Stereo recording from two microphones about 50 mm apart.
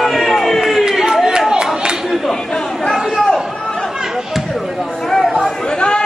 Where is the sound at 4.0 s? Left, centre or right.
Centre.